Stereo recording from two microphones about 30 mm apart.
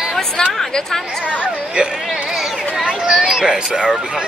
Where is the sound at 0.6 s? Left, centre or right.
Centre.